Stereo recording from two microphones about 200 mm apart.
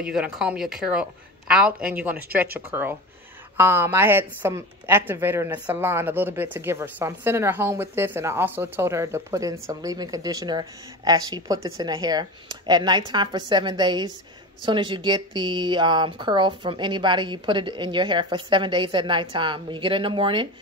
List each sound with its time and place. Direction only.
0.1 s speech: 5° right (ahead or behind); by 20.4 s 25° right (ahead or behind)